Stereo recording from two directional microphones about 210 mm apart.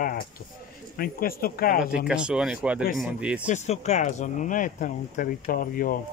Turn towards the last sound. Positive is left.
turn(degrees=40)  # may be behind; listen again after turning